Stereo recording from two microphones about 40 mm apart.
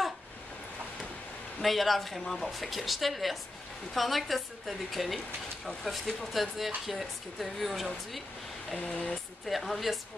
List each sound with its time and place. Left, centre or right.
1.6 s speech: centre
6.3 s speech: centre
8.8 s speech: left
9.1 s speech: centre